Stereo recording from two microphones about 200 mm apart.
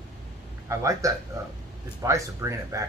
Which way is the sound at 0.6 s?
15° right (ahead or behind).